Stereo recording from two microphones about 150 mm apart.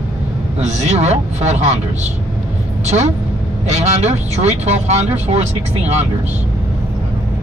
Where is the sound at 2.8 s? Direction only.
50° right (ahead or behind).